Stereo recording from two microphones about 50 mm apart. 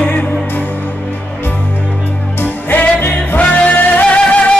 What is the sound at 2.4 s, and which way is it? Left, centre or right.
Music, left.